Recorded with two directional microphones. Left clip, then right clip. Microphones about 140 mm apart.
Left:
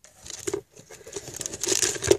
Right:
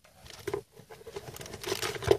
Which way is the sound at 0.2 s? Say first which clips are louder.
Left 5 dB; 45° left (ahead or behind).